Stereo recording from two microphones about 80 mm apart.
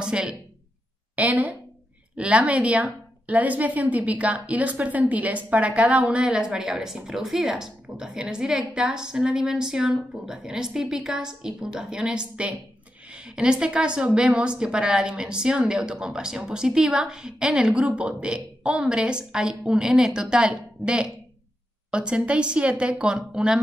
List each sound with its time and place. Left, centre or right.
0.0 s a woman's voice: centre